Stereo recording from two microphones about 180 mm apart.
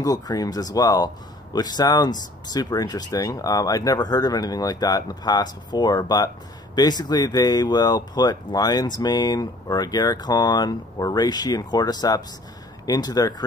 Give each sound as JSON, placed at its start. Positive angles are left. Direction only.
{"t": 0.0, "sound": "speech", "side_deg": 20}